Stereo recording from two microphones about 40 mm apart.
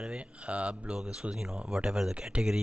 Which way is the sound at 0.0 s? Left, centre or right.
Right.